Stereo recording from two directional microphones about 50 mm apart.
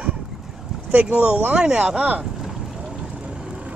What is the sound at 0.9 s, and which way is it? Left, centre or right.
Speech, right.